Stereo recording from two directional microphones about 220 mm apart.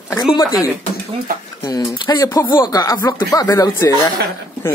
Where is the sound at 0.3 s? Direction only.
20° left (ahead or behind).